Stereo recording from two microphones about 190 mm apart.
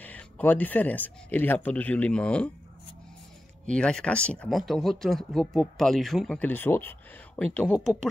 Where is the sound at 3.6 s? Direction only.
5° left (ahead or behind).